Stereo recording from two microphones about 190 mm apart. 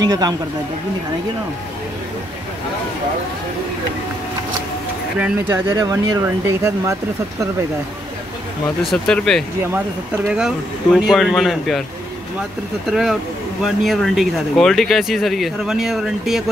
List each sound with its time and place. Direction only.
0.0 s speech: 20° right (ahead or behind)
5.2 s speech: 15° right (ahead or behind)
8.9 s speech: 5° left (ahead or behind)
12.9 s speech: centre (ahead or behind)